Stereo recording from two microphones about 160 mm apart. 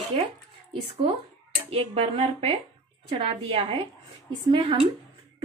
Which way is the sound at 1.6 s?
40° right (ahead or behind).